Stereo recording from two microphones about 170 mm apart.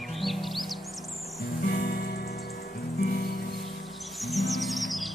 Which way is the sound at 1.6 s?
70° left (ahead or behind).